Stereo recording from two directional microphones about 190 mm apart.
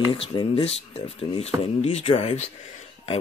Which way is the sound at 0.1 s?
30° left (ahead or behind).